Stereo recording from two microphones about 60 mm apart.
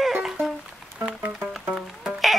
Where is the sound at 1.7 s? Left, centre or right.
Centre.